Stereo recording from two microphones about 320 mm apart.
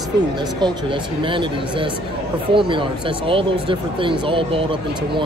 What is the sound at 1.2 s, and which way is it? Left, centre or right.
Speech, centre.